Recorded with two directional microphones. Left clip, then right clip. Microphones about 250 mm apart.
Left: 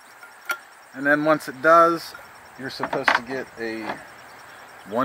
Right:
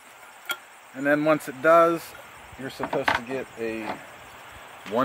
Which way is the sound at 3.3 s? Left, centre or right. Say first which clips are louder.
Left 1 dB; centre.